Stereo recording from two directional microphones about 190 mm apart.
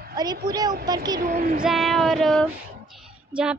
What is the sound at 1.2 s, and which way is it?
Child singing, 45° right (ahead or behind).